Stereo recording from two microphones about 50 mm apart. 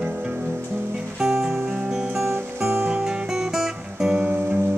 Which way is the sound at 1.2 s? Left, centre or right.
Centre.